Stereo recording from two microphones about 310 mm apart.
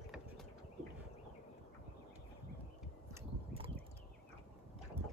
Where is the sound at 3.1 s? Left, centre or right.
Centre.